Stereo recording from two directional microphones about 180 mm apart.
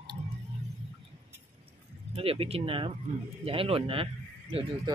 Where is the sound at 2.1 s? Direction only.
35° right (ahead or behind).